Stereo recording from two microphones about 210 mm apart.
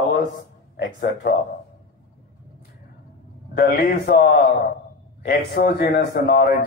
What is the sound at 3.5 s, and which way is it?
Speech, 45° left (ahead or behind).